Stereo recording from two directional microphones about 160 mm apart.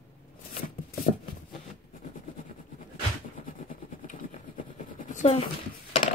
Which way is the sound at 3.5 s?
55° left (ahead or behind).